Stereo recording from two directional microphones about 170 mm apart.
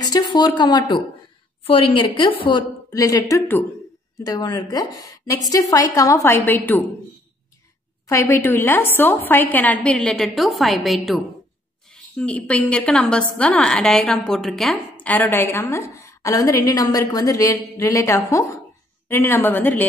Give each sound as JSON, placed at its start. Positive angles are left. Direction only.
{"t": 0.0, "sound": "a woman's voice", "side_deg": 25}
{"t": 8.1, "sound": "a woman's voice", "side_deg": 15}